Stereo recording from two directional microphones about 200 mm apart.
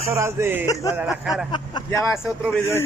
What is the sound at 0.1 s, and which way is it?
Speech, 15° right (ahead or behind).